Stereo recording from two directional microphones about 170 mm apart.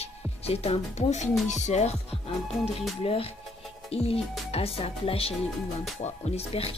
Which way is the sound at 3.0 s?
35° left (ahead or behind).